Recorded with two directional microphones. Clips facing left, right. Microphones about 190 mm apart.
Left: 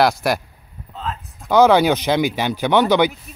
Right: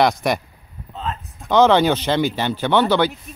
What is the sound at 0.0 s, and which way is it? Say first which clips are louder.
Speech: even; 5° left (ahead or behind).